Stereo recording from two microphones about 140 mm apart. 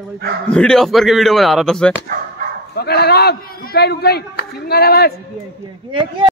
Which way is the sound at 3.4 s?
90° left.